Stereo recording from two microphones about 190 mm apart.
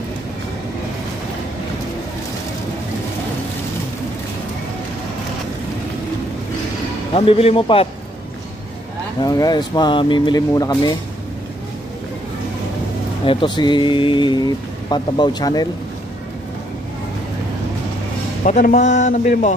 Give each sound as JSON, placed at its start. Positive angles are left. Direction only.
{"t": 7.2, "sound": "speech", "side_deg": 30}
{"t": 9.2, "sound": "speech", "side_deg": 20}
{"t": 13.2, "sound": "speech", "side_deg": 25}
{"t": 18.4, "sound": "speech", "side_deg": 40}